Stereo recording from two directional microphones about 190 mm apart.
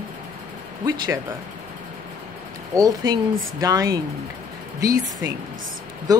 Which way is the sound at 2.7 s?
20° right (ahead or behind).